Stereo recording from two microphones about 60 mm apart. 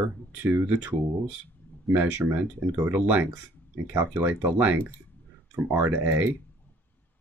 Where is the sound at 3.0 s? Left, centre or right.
Right.